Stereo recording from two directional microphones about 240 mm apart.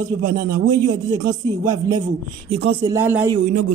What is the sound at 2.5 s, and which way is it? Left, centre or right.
Speech, right.